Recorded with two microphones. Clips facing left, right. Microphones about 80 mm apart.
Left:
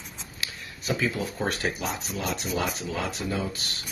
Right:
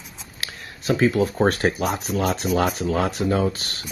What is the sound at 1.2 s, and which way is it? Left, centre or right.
Speech, right.